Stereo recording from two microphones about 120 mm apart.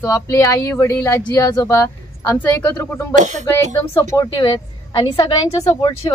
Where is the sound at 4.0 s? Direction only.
30° left (ahead or behind).